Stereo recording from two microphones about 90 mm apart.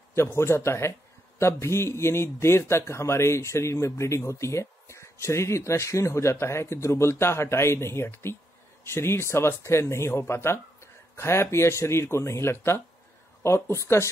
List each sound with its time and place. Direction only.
0.1 s a man's voice: 30° left (ahead or behind)